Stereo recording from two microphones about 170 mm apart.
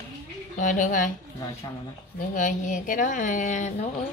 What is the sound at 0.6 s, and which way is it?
Speech, 50° left (ahead or behind).